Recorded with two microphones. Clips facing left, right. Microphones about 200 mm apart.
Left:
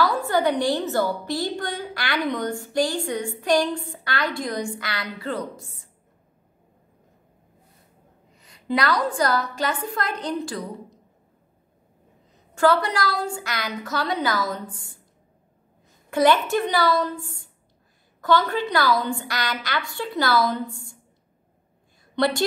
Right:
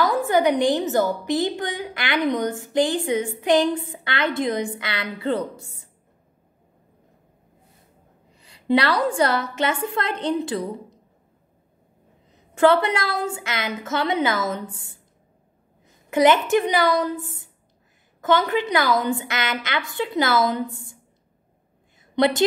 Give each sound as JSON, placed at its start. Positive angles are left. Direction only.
{"t": 0.0, "sound": "a woman's voice", "side_deg": -15}
{"t": 8.4, "sound": "a woman's voice", "side_deg": -30}
{"t": 12.5, "sound": "a woman's voice", "side_deg": -25}
{"t": 16.1, "sound": "a woman's voice", "side_deg": -20}
{"t": 22.1, "sound": "a woman's voice", "side_deg": -20}